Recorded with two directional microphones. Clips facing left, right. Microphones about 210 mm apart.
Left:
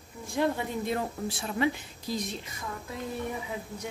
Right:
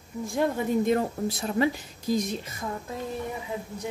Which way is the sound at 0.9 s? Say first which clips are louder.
Right 6 dB; 40° right (ahead or behind).